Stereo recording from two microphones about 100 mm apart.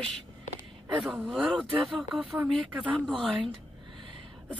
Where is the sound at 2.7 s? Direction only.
15° right (ahead or behind).